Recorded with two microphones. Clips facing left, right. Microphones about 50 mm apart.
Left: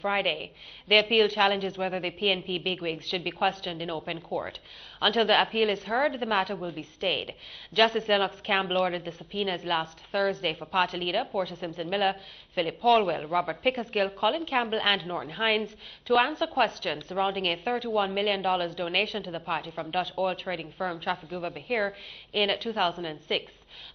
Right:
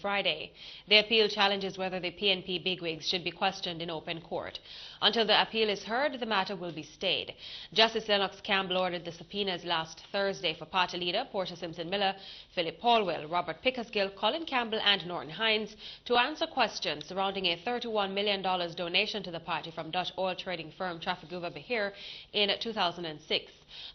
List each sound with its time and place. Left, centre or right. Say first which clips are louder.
0.0 s a woman's voice: left 4 dB; centre
4.0 s a woman's voice: left 4 dB; centre
4.5 s a woman's voice: left 3 dB; centre
12.8 s speech: left 4 dB; centre
13.1 s a woman's voice: left 4 dB; centre
13.4 s a woman's voice: left 4 dB; centre